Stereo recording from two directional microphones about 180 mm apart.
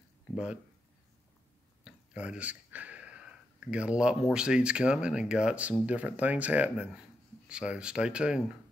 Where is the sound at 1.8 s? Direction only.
5° right (ahead or behind).